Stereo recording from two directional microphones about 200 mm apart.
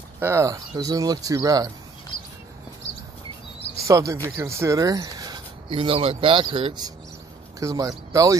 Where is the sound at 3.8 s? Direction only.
15° right (ahead or behind).